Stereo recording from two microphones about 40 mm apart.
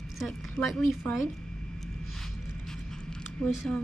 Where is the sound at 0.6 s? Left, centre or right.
Left.